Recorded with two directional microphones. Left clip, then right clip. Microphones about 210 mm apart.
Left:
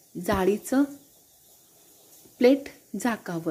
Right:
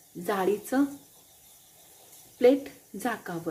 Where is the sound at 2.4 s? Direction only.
40° left (ahead or behind).